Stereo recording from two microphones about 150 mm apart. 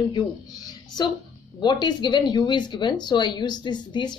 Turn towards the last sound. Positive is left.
turn(degrees=30)  # may be behind; listen again after turning